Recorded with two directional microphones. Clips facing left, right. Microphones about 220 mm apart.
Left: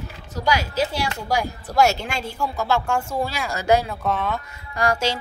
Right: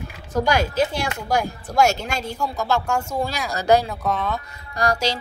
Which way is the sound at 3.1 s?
5° left (ahead or behind).